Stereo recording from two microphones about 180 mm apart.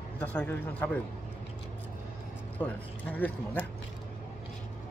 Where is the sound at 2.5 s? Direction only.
10° left (ahead or behind).